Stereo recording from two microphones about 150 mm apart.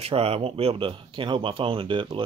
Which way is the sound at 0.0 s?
40° right (ahead or behind).